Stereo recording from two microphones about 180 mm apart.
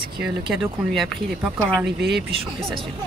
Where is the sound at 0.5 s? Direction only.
Centre (ahead or behind).